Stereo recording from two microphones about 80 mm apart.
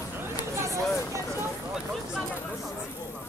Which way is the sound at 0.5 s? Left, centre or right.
Right.